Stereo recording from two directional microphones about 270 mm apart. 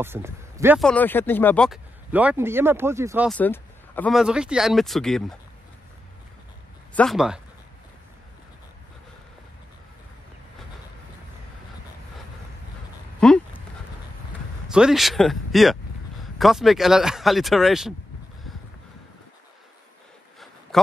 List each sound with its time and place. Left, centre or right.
0.0 s speech: centre
0.8 s speech: centre
3.3 s speech: centre
7.0 s speech: centre
13.2 s a sound: centre
14.7 s speech: centre
20.7 s a sound: centre